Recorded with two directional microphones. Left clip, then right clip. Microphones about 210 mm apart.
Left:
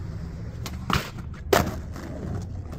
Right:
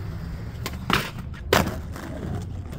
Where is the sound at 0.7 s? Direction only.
10° right (ahead or behind).